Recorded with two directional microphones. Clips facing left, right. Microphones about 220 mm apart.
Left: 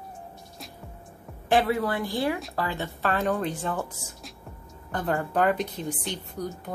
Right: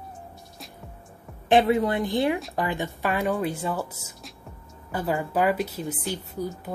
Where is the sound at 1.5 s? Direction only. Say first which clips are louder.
Right 4 dB; 20° right (ahead or behind).